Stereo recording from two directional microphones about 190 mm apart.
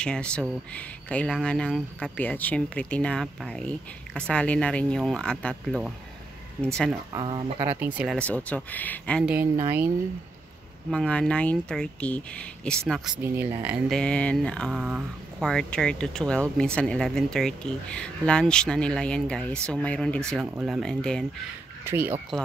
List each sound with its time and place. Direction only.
0.0 s speech: 5° left (ahead or behind)
7.1 s speech: 25° right (ahead or behind)
7.8 s speech: 5° right (ahead or behind)
8.2 s speech: 5° left (ahead or behind)
9.3 s speech: 10° right (ahead or behind)
10.9 s speech: 5° left (ahead or behind)
13.9 s speech: 5° left (ahead or behind)
21.8 s speech: 10° right (ahead or behind)
22.3 s speech: centre (ahead or behind)